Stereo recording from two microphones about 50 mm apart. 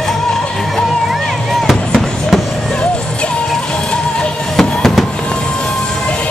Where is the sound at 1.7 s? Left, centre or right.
Centre.